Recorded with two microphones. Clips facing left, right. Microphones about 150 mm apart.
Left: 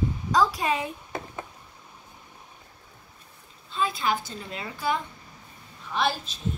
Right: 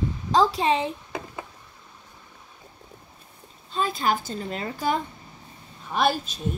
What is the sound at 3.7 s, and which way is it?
A woman's voice, 45° right (ahead or behind).